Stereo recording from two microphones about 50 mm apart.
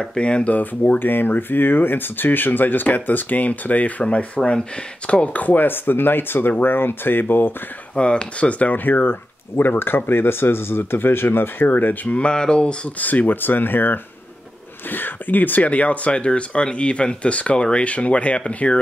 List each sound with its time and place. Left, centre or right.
0.0 s speech: centre
0.9 s speech: left
7.9 s speech: left
12.2 s speech: centre
13.0 s speech: left